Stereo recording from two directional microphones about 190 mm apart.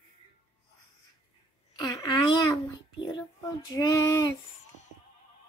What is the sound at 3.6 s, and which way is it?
Female singing, 20° left (ahead or behind).